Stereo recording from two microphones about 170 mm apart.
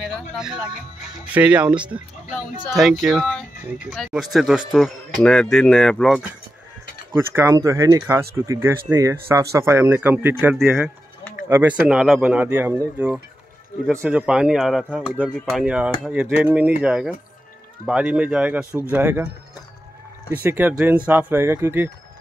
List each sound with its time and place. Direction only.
0.0 s music: centre (ahead or behind)
1.3 s a man's voice: 10° right (ahead or behind)
7.2 s speech: 15° right (ahead or behind)
11.9 s a man's voice: 5° right (ahead or behind)
20.4 s speech: 10° right (ahead or behind)